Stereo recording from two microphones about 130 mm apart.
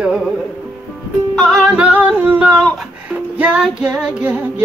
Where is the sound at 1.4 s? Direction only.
Centre (ahead or behind).